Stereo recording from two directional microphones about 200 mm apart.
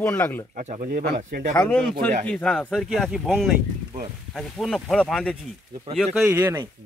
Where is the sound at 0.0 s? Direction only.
10° left (ahead or behind).